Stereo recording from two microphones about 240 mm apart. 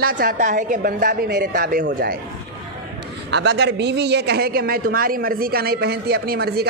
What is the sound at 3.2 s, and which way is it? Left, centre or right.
A woman's voice, right.